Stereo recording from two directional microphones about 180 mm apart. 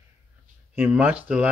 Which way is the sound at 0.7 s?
10° right (ahead or behind).